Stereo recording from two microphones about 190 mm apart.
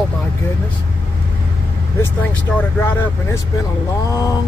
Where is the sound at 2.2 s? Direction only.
10° left (ahead or behind).